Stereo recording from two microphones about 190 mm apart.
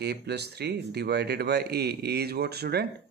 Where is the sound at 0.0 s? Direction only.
60° right (ahead or behind).